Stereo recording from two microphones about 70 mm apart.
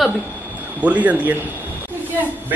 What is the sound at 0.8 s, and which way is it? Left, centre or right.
Speech, right.